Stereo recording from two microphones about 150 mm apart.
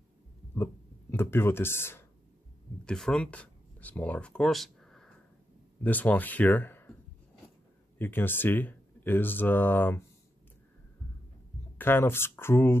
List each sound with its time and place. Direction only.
1.1 s speech: 15° left (ahead or behind)
2.8 s speech: 5° left (ahead or behind)
8.0 s speech: 15° left (ahead or behind)
11.8 s speech: 15° left (ahead or behind)